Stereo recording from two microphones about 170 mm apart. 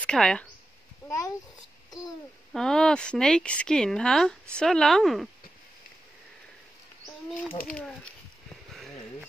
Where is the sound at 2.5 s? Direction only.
5° left (ahead or behind).